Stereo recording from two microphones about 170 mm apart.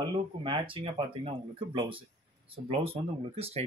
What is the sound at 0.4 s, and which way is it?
Speech, 30° right (ahead or behind).